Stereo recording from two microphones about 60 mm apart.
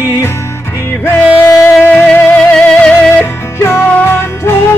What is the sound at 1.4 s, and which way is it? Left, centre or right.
Music, left.